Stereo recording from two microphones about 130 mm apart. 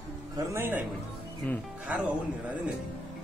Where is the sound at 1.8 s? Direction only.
10° right (ahead or behind).